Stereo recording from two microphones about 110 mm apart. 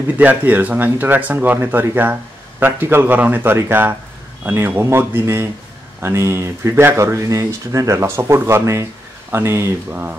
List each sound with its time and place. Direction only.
0.2 s speech: 15° right (ahead or behind)